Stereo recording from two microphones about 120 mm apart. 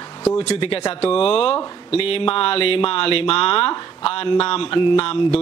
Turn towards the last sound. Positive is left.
turn(degrees=50)  # may be behind; listen again after turning